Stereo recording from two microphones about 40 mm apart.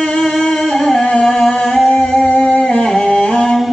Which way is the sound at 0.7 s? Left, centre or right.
Centre.